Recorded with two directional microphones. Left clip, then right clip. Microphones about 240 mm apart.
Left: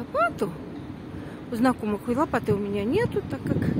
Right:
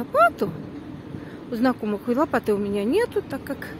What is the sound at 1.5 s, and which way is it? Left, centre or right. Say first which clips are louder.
Speech: right 1 dB; centre.